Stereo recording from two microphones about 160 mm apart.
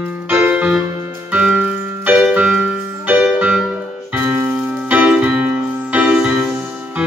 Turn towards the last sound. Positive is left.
turn(degrees=-5)  # may be behind; listen again after turning